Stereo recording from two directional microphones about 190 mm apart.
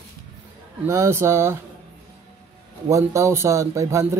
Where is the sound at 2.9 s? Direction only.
15° right (ahead or behind).